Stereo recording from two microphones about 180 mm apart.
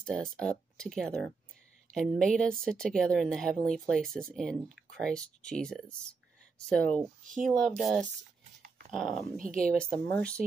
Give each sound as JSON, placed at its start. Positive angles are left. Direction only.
{"t": 0.0, "sound": "speech", "side_deg": 5}
{"t": 9.4, "sound": "speech", "side_deg": -50}